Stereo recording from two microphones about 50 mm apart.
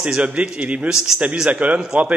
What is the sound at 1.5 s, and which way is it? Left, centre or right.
Speech, right.